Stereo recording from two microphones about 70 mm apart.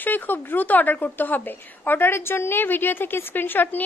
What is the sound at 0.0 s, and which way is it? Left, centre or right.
A woman's voice, left.